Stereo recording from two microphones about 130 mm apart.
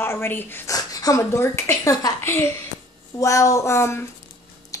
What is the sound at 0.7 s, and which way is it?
Speech, 30° left (ahead or behind).